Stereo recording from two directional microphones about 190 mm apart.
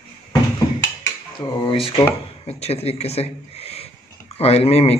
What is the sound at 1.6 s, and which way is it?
Speech, 30° left (ahead or behind).